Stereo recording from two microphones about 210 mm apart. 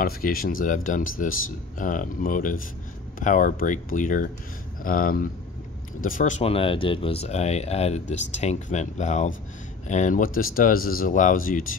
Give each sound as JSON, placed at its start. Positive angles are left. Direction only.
{"t": 0.0, "sound": "speech", "side_deg": 45}